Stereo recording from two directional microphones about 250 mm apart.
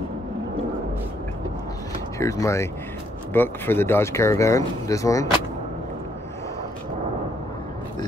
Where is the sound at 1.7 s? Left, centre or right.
Centre.